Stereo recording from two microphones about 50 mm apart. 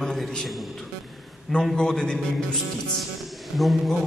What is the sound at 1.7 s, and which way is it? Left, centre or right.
Speech, centre.